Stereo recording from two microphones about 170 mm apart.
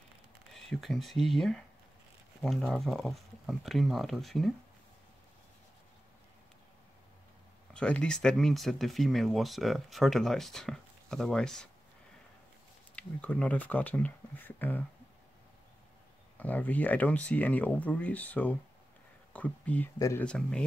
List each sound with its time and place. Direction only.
0.5 s speech: centre (ahead or behind)
7.7 s speech: 5° left (ahead or behind)
12.9 s speech: 10° left (ahead or behind)
16.3 s speech: 10° left (ahead or behind)
20.2 s speech: 5° left (ahead or behind)